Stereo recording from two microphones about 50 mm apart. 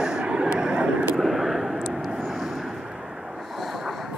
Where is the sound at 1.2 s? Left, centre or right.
Centre.